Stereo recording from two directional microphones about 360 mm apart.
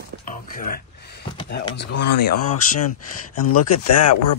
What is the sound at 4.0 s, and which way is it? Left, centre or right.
Speech, left.